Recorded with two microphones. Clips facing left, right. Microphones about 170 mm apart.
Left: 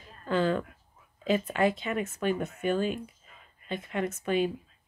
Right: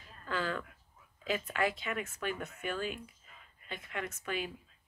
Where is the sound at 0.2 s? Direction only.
25° left (ahead or behind).